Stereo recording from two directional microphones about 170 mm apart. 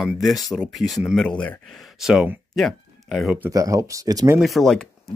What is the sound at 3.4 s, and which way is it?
Speech, 20° right (ahead or behind).